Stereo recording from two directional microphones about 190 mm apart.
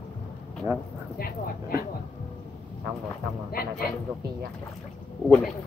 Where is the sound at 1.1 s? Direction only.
50° left (ahead or behind).